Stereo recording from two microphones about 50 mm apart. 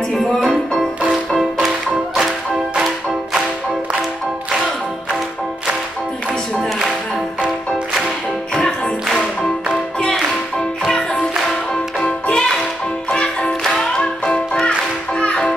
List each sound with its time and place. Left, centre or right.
1.1 s music: centre
8.5 s music: centre
10.9 s music: centre